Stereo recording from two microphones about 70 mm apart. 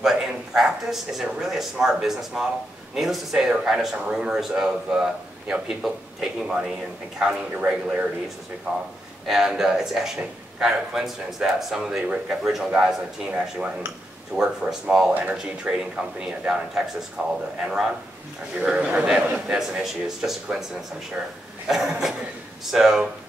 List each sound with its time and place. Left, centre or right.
0.0 s speech: centre
7.2 s speech: centre
9.2 s speech: centre
17.2 s speech: right
18.6 s speech: centre
21.6 s a sound: centre
22.7 s speech: centre